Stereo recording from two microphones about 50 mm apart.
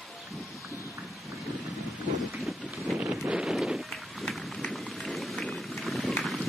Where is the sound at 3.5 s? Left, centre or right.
Centre.